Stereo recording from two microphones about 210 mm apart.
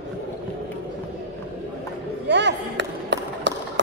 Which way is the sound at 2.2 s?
55° right (ahead or behind).